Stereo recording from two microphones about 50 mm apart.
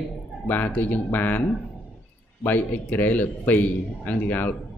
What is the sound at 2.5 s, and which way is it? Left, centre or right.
A man's voice, left.